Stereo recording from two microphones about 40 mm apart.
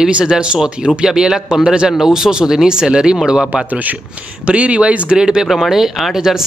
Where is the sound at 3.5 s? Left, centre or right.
Right.